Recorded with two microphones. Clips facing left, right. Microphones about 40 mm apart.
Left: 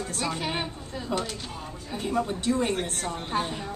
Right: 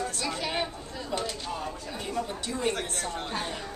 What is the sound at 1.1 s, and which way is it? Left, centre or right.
Speech, centre.